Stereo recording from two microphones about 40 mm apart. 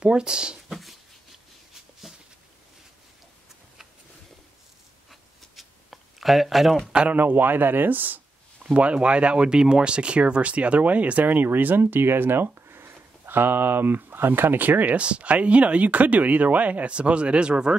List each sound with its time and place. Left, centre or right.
0.0 s speech: right
0.7 s dog: centre
5.6 s a sound: centre
7.1 s speech: right
8.7 s speech: right
15.0 s speech: right